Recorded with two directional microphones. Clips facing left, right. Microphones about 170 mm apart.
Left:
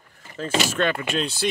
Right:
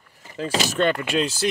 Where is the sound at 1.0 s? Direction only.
5° right (ahead or behind).